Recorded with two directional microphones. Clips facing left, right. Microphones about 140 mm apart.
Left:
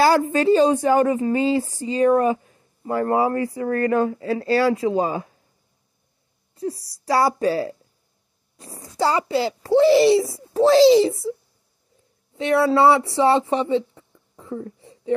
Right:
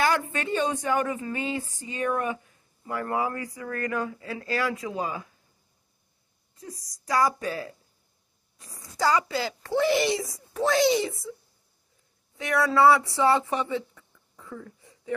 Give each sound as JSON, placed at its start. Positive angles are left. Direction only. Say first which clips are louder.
{"t": 0.0, "sound": "a woman's voice", "louder": "left 9 dB", "side_deg": 35}
{"t": 6.5, "sound": "a woman's voice", "louder": "left 15 dB", "side_deg": 30}
{"t": 8.9, "sound": "a child's voice", "louder": "left 4 dB", "side_deg": 25}
{"t": 12.4, "sound": "speech", "louder": "left 5 dB", "side_deg": 30}